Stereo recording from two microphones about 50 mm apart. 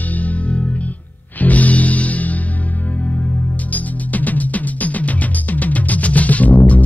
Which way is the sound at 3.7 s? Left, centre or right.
Left.